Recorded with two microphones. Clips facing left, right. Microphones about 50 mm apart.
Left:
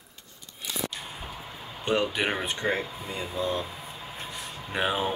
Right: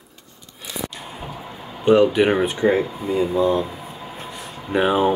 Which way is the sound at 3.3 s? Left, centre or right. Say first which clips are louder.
Right 11 dB; centre.